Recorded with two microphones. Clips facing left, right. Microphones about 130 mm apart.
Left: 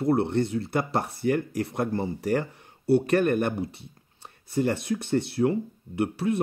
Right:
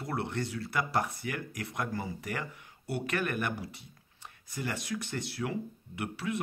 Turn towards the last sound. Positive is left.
turn(degrees=30)  # may be behind; listen again after turning